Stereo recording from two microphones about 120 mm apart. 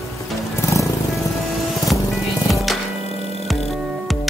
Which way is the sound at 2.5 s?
Centre (ahead or behind).